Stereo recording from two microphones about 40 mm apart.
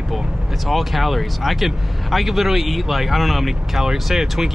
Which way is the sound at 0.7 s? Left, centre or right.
Centre.